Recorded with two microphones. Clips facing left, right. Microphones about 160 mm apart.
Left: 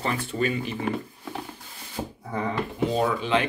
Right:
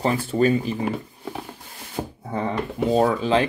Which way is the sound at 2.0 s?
55° right (ahead or behind).